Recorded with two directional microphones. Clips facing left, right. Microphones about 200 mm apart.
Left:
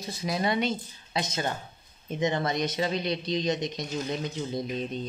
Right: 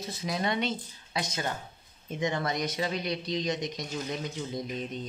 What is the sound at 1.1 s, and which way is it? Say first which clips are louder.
Speech: left 3 dB; 25° left (ahead or behind).